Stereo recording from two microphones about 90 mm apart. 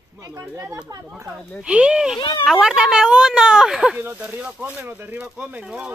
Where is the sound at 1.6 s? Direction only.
10° right (ahead or behind).